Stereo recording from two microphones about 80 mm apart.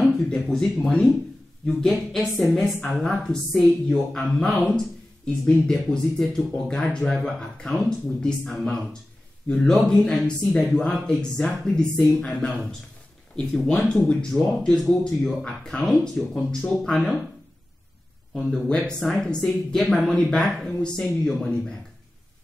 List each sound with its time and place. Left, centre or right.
0.2 s a man's voice: centre
18.5 s a man's voice: centre